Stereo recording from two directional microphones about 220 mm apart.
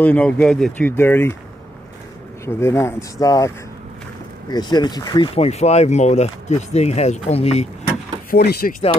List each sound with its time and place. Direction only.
0.0 s speech: 5° left (ahead or behind)
2.4 s speech: 10° left (ahead or behind); by 7.6 s 30° left (ahead or behind)
8.3 s speech: 45° left (ahead or behind)